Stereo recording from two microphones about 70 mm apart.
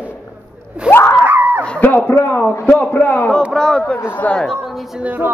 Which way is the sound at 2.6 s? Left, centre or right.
Centre.